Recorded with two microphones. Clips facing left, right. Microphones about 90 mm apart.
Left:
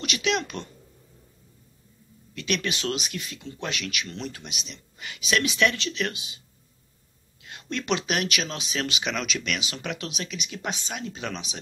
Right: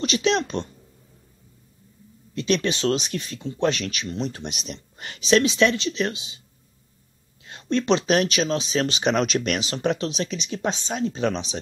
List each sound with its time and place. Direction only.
0.0 s speech: 30° right (ahead or behind)
2.3 s speech: 30° right (ahead or behind)
4.5 s speech: 40° right (ahead or behind)
5.3 s speech: 25° right (ahead or behind)
7.4 s speech: 30° right (ahead or behind)